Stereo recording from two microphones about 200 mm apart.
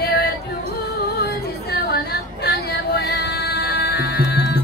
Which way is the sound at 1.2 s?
55° left (ahead or behind).